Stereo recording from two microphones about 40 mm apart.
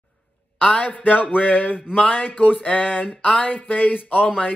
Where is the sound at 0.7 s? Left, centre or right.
Left.